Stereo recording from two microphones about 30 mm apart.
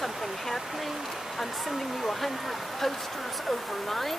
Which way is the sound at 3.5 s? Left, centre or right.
Centre.